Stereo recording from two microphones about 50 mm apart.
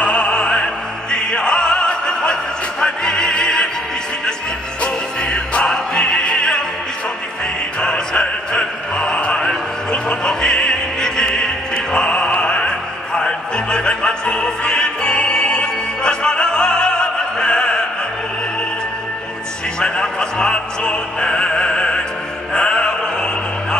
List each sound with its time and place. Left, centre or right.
0.0 s music: centre
1.1 s opera: centre
5.3 s music: centre
7.8 s music: centre
19.8 s music: centre